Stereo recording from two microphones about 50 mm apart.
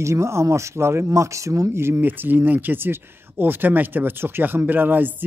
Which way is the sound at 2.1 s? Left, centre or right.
Right.